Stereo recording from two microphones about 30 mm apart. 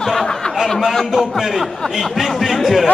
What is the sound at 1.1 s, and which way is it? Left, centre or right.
Speech, centre.